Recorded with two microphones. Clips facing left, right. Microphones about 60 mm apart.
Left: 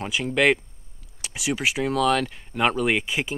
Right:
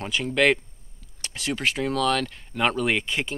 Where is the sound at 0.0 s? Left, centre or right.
Centre.